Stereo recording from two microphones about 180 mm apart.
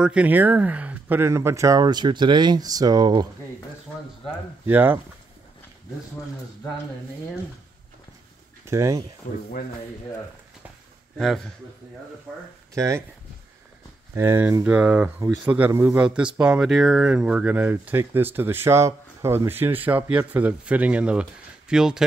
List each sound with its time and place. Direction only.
0.0 s speech: 5° right (ahead or behind); by 3.3 s 20° right (ahead or behind)
4.6 s speech: 10° right (ahead or behind)
8.6 s speech: 15° right (ahead or behind)
11.1 s a man's voice: centre (ahead or behind)
12.7 s speech: 15° right (ahead or behind)
14.1 s speech: 15° right (ahead or behind)